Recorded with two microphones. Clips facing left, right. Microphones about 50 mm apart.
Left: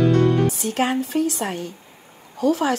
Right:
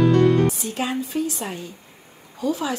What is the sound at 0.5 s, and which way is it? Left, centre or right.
Speech, left.